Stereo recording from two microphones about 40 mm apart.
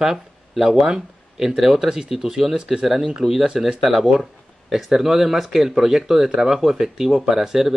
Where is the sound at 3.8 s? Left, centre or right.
Centre.